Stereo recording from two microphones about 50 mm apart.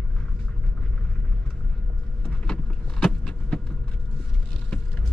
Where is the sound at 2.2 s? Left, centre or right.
Centre.